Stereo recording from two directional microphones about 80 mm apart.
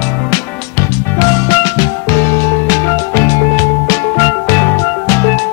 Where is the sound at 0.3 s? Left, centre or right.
Left.